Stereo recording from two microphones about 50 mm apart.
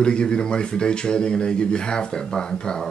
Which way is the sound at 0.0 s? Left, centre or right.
Centre.